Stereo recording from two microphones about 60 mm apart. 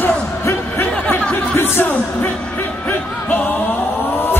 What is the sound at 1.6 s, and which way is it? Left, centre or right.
Music, left.